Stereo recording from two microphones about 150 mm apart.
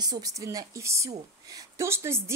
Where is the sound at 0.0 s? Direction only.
25° right (ahead or behind).